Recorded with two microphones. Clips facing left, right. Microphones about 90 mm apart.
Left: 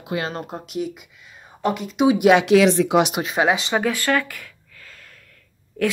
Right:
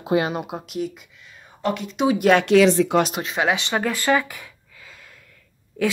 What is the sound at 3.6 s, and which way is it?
Speech, 5° left (ahead or behind).